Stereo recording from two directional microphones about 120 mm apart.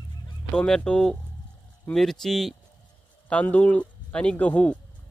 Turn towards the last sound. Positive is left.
turn(degrees=10)  # may be behind; listen again after turning